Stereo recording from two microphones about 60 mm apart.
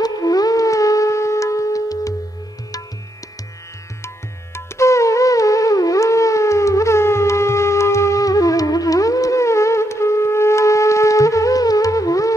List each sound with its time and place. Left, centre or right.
0.0 s shofar: left
4.6 s music: left